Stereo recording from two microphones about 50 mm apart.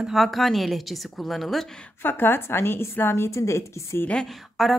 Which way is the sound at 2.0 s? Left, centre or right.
Left.